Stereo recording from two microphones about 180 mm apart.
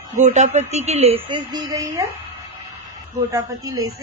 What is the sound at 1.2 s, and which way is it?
Speech, 25° right (ahead or behind).